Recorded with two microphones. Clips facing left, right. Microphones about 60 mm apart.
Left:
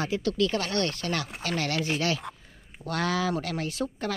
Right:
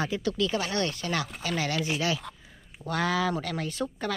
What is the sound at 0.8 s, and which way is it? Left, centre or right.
Speech, left.